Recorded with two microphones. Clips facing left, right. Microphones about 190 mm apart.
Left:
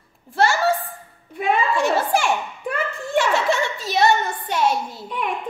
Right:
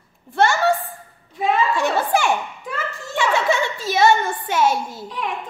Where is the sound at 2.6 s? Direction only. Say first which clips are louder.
Left 3 dB; 55° left (ahead or behind).